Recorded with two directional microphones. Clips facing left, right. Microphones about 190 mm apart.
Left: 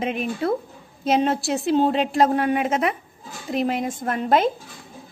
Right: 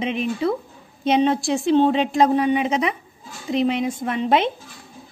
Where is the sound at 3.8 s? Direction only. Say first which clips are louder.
Right 2 dB; 50° left (ahead or behind).